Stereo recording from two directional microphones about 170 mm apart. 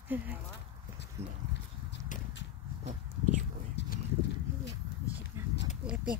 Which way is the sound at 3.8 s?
90° left.